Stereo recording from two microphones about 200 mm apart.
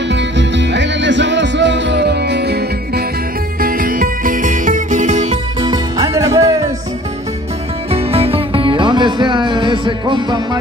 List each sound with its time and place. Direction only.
0.1 s music: 60° right (ahead or behind)
3.6 s music: 45° right (ahead or behind)
5.6 s music: 20° right (ahead or behind)
7.9 s music: 30° right (ahead or behind)